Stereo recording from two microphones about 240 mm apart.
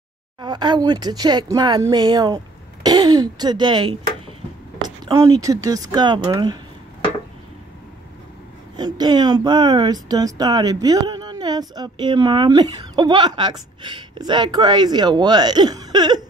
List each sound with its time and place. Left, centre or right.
0.4 s speech: centre
8.7 s speech: centre